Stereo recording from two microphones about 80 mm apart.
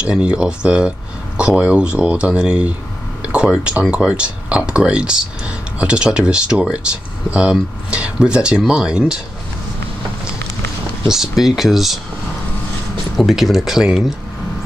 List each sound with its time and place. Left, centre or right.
0.0 s speech: centre
11.1 s speech: centre
13.1 s speech: centre